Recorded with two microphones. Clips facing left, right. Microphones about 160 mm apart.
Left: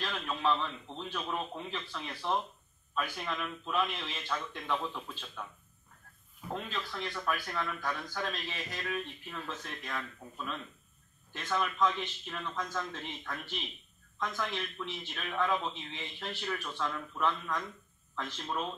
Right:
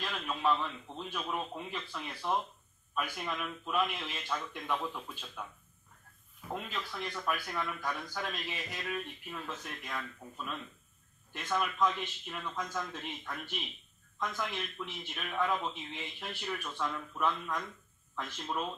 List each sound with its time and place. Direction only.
0.0 s speech: 10° right (ahead or behind)
6.5 s speech: 10° right (ahead or behind)